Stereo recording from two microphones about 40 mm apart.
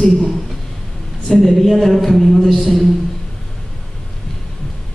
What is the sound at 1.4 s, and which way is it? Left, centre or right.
Speech, centre.